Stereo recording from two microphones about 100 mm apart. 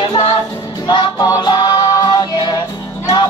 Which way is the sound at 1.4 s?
45° left (ahead or behind).